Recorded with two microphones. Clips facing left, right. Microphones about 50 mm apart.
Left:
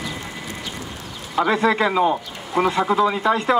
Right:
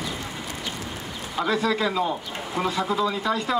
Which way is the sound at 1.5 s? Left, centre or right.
Left.